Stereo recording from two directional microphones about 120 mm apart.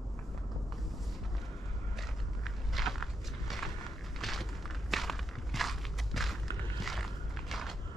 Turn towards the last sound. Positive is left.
turn(degrees=0)  # may be behind; listen again after turning